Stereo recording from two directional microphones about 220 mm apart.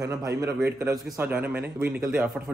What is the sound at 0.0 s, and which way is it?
A man's voice, 15° right (ahead or behind).